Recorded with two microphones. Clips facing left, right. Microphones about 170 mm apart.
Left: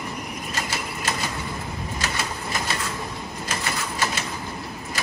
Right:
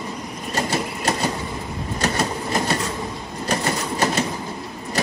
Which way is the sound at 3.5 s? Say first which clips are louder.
Right 7 dB; 40° right (ahead or behind).